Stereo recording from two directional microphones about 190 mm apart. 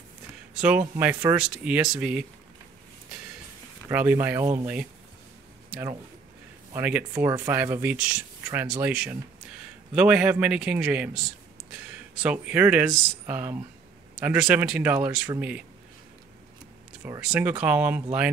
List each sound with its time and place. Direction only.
0.6 s speech: 10° right (ahead or behind)
3.9 s speech: 10° right (ahead or behind)
6.7 s speech: 10° right (ahead or behind)
17.2 s speech: 5° right (ahead or behind)